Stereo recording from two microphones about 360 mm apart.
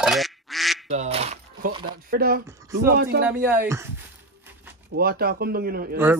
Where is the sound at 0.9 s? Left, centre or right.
Centre.